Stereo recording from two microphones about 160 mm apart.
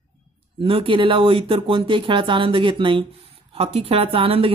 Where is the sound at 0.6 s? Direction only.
35° right (ahead or behind).